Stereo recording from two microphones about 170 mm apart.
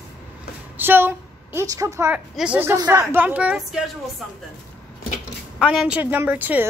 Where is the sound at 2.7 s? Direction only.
20° right (ahead or behind).